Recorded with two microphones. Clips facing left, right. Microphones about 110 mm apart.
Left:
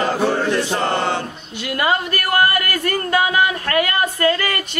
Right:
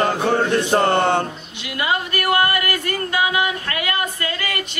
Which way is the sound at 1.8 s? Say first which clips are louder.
Left 2 dB; 45° left (ahead or behind).